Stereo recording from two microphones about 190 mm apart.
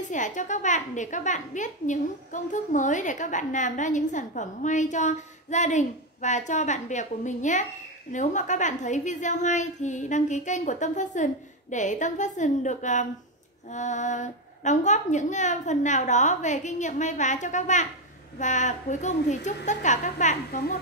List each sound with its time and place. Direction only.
0.0 s a woman's voice: 40° left (ahead or behind)